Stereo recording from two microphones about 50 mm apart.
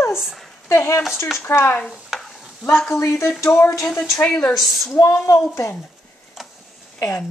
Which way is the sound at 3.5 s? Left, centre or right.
Left.